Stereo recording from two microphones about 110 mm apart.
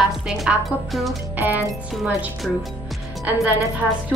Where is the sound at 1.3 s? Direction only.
15° right (ahead or behind).